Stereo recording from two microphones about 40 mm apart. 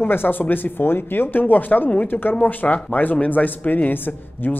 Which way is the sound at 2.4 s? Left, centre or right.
Left.